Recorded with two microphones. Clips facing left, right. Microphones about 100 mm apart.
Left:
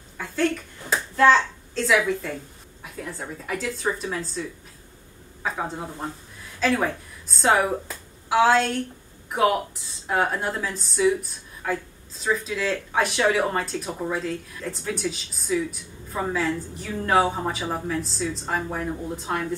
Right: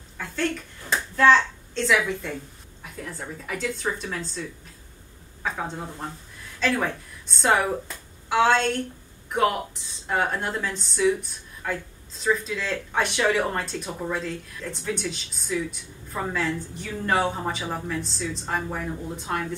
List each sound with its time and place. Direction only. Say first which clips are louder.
0.2 s a sound: left 3 dB; centre (ahead or behind)
1.1 s a child's voice: left 1 dB; 15° left (ahead or behind)
1.8 s a woman's voice: left 2 dB; centre (ahead or behind)